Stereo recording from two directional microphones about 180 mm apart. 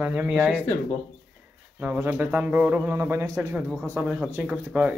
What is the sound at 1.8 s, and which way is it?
Speech, 10° right (ahead or behind).